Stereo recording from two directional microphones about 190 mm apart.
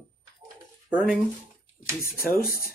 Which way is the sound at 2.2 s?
50° left (ahead or behind).